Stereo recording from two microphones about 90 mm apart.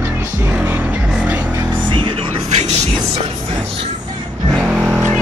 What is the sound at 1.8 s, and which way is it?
Music, 65° right (ahead or behind).